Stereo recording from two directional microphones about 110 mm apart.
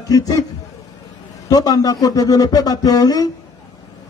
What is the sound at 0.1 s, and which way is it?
Speech, 35° left (ahead or behind).